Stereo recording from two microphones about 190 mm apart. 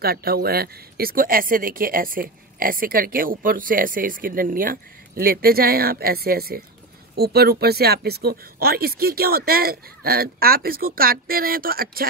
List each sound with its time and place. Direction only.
0.0 s speech: 50° right (ahead or behind)